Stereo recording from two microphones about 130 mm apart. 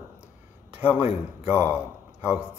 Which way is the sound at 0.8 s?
10° right (ahead or behind).